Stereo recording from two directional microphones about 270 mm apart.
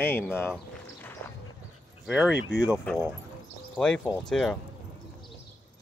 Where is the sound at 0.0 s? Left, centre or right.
Centre.